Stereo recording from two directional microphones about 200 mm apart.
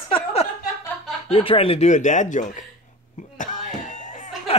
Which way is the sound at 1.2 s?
25° left (ahead or behind).